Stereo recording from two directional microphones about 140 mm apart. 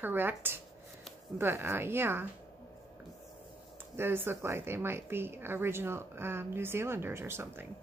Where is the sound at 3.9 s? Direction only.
15° right (ahead or behind).